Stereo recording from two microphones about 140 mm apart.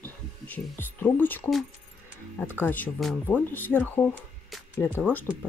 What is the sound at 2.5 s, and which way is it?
Speech, 15° left (ahead or behind).